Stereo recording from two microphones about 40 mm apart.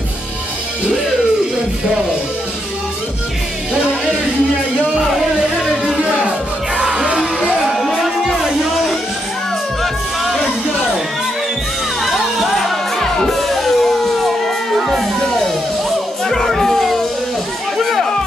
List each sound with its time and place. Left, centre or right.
3.7 s music: right
5.2 s music: centre
6.8 s music: right
7.7 s a sound: centre
12.0 s music: centre
16.3 s children playing: centre
16.6 s howl: centre
17.7 s music: centre